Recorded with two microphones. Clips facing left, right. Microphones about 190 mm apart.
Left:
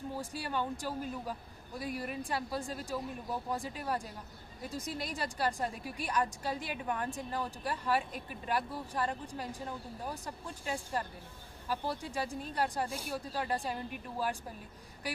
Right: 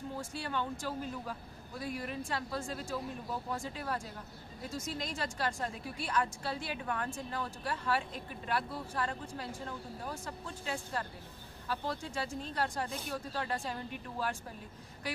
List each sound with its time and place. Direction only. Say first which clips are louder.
0.3 s a woman's voice: left 1 dB; 10° left (ahead or behind)